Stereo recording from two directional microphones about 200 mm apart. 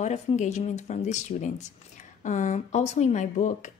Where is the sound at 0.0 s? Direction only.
35° left (ahead or behind).